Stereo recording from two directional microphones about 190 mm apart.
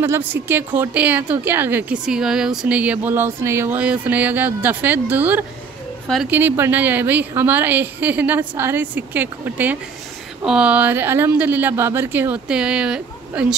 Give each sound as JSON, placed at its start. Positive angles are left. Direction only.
{"t": 0.0, "sound": "speech", "side_deg": -10}